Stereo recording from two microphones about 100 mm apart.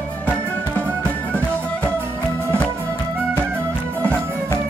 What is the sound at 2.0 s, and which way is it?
Music, 25° right (ahead or behind).